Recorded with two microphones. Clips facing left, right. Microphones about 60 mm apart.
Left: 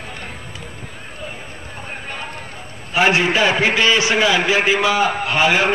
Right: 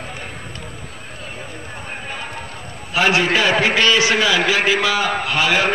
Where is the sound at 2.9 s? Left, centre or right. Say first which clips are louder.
Left 1 dB; left.